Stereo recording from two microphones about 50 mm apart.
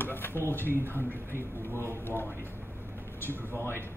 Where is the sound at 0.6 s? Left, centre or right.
Right.